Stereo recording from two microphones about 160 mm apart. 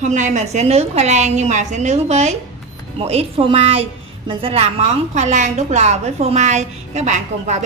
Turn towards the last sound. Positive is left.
turn(degrees=-45)  # may be behind; listen again after turning